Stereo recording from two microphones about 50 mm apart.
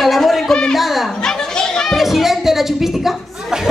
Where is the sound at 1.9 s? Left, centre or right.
Centre.